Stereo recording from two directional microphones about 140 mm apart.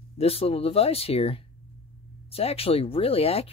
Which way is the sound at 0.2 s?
45° left (ahead or behind).